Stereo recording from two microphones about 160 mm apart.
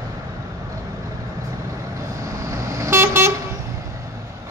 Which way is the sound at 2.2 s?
20° right (ahead or behind).